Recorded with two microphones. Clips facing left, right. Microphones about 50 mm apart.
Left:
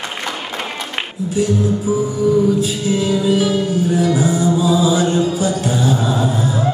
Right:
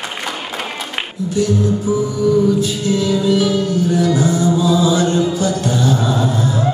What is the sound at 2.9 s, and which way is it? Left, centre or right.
Music, left.